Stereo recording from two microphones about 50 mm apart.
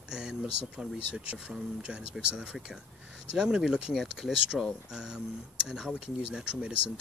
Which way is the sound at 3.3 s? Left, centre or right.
Centre.